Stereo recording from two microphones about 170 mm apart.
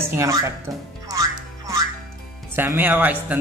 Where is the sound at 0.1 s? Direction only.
20° right (ahead or behind).